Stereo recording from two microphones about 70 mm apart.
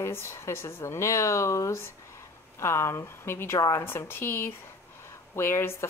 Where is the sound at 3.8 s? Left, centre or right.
Left.